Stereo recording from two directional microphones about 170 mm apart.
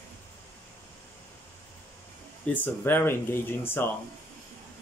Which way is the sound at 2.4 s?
10° left (ahead or behind).